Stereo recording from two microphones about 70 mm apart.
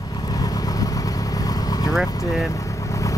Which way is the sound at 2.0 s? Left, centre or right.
Left.